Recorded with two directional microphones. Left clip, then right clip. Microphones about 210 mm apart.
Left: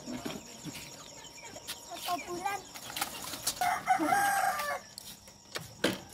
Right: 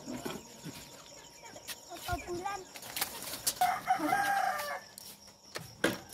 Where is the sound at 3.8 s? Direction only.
35° left (ahead or behind).